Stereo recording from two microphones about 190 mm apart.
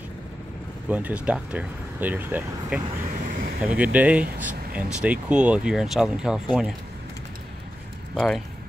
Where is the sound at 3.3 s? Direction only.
50° right (ahead or behind).